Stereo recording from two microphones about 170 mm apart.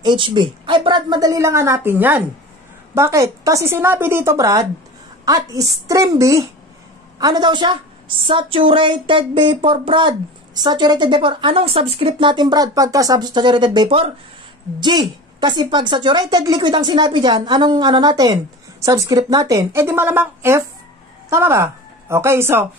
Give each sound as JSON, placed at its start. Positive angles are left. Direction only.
{"t": 0.0, "sound": "a woman's voice", "side_deg": -30}